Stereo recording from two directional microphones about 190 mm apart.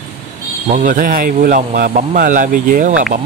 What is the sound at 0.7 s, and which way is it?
Speech, 45° right (ahead or behind).